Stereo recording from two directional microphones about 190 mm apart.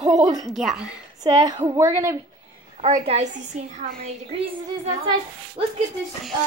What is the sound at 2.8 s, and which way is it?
A woman's voice, 35° right (ahead or behind).